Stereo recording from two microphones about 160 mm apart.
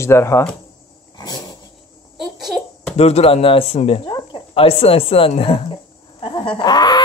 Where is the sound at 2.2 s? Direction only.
Centre (ahead or behind).